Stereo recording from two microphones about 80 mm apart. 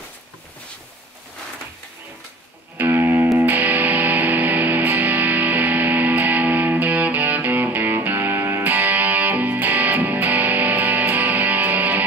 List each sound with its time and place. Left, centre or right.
2.8 s music: right